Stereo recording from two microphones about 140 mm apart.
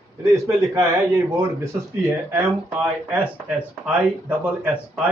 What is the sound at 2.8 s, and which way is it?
Speech, 10° right (ahead or behind).